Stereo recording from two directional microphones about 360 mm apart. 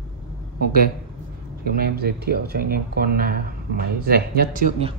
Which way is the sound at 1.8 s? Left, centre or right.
Right.